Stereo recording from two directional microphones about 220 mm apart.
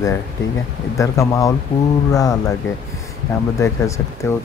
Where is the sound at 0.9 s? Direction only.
15° left (ahead or behind).